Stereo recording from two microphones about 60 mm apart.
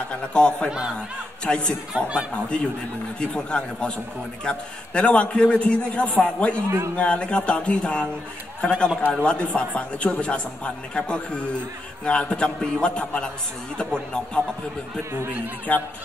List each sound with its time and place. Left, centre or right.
0.1 s a man's voice: centre
0.7 s speech: centre
1.4 s a man's voice: centre
3.2 s a man's voice: centre
15.7 s a man's voice: left